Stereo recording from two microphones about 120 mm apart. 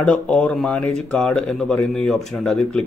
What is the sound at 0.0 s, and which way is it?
Speech, 10° left (ahead or behind).